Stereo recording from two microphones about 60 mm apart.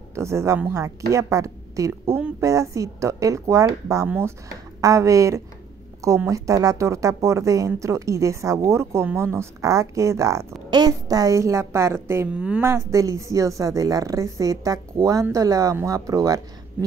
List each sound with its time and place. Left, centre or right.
0.1 s a woman's voice: right
2.4 s speech: right
4.5 s speech: right
9.6 s speech: right
10.9 s speech: right
12.3 s speech: centre
12.6 s a woman's voice: right